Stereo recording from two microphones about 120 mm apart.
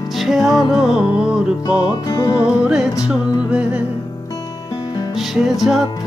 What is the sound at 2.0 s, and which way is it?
Music, 35° left (ahead or behind).